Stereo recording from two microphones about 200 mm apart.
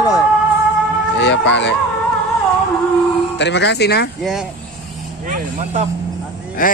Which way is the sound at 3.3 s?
60° left (ahead or behind).